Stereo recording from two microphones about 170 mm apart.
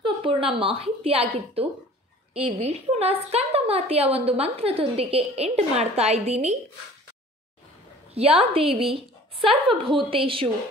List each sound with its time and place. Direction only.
0.0 s a woman's voice: 30° right (ahead or behind)
8.1 s a woman's voice: 35° right (ahead or behind)